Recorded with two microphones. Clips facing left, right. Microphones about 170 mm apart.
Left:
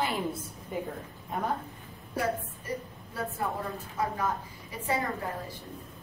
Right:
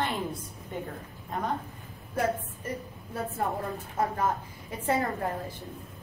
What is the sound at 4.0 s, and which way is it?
Speech, 50° right (ahead or behind).